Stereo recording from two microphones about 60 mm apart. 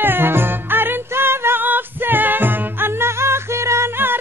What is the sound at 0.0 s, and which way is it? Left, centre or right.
Music, right.